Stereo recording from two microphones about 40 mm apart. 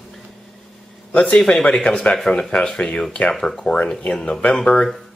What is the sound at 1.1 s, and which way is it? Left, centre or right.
Speech, left.